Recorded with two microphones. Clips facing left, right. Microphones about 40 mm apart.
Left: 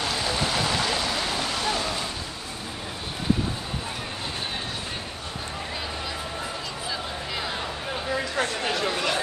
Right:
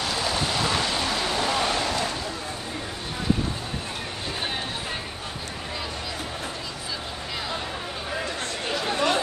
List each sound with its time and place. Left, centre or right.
1.4 s boat: right
8.9 s chatter: right